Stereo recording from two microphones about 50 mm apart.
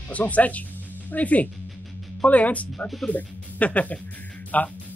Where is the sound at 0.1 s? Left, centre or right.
Left.